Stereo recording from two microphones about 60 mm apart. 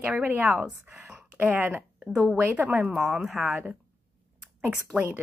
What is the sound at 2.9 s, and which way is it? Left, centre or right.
Speech, centre.